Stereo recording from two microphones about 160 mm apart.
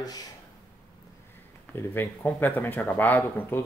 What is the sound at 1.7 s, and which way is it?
Speech, 10° left (ahead or behind).